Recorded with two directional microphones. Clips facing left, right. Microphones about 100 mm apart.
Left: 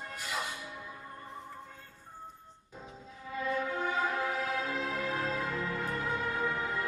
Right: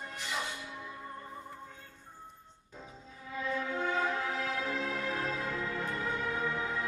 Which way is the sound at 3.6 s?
5° left (ahead or behind).